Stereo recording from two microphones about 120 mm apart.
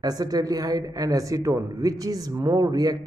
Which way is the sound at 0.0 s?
30° right (ahead or behind).